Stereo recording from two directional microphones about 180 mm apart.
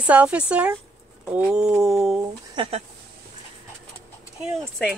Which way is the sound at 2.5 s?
25° right (ahead or behind).